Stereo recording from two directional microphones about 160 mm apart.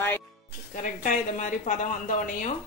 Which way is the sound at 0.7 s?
50° left (ahead or behind).